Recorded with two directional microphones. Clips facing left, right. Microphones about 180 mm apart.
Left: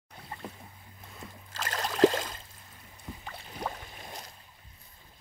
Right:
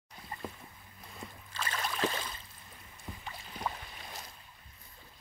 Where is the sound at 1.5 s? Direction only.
40° left (ahead or behind).